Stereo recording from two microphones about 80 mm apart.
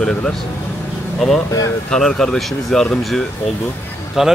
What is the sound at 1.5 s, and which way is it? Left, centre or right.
Speech, left.